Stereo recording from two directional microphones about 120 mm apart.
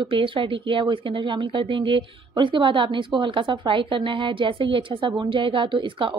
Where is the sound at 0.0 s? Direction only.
45° right (ahead or behind).